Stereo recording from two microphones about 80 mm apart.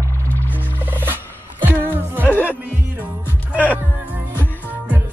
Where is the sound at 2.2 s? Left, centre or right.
Left.